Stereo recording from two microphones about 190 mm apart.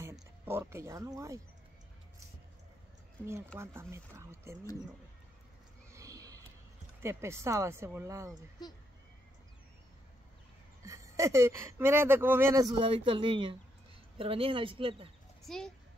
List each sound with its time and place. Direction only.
0.5 s speech: 15° right (ahead or behind)
3.5 s speech: 15° right (ahead or behind)
5.9 s a sound: 15° right (ahead or behind)
7.0 s speech: 15° right (ahead or behind)
8.6 s speech: 20° left (ahead or behind)
10.8 s speech: 15° right (ahead or behind)
12.7 s speech: 30° right (ahead or behind)
15.4 s a child's voice: 5° left (ahead or behind)